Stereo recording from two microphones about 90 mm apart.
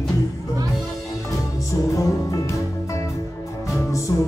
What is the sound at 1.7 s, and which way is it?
Music, 35° left (ahead or behind).